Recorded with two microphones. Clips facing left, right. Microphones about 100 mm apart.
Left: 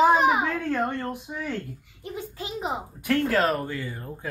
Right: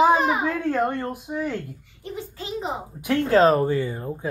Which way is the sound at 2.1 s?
15° left (ahead or behind).